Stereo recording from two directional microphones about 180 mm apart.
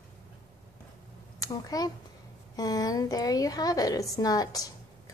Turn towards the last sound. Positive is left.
turn(degrees=20)  # may be behind; listen again after turning